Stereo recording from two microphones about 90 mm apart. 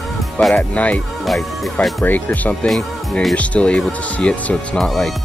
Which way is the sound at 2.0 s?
20° left (ahead or behind).